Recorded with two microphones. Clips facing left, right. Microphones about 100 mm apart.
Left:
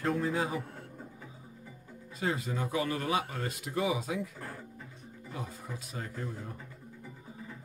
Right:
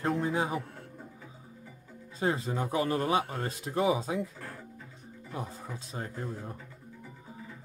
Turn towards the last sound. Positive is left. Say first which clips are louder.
# right 2 dB
turn(degrees=-30)  # may be behind; listen again after turning